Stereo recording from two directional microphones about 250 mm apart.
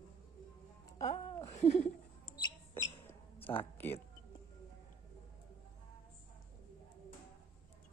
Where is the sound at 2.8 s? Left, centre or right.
Centre.